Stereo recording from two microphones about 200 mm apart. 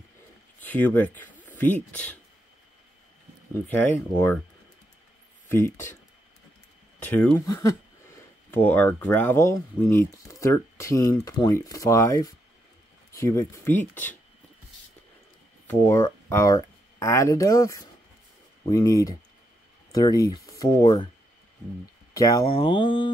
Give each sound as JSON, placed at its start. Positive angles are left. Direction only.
{"t": 0.6, "sound": "speech", "side_deg": 10}
{"t": 3.6, "sound": "speech", "side_deg": 10}
{"t": 5.5, "sound": "speech", "side_deg": 10}
{"t": 7.0, "sound": "speech", "side_deg": 5}
{"t": 15.6, "sound": "speech", "side_deg": 10}
{"t": 22.1, "sound": "speech", "side_deg": 15}